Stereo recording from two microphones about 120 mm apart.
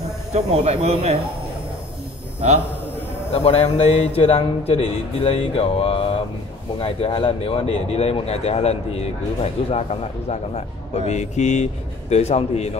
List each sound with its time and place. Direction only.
0.3 s speech: 60° right (ahead or behind)
3.3 s speech: 60° left (ahead or behind)